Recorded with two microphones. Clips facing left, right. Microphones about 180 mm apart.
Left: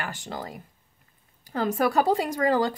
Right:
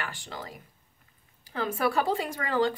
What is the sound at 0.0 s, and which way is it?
Speech, 40° left (ahead or behind).